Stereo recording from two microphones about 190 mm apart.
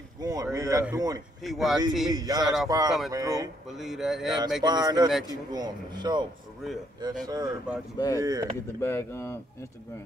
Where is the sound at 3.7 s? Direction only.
Centre (ahead or behind).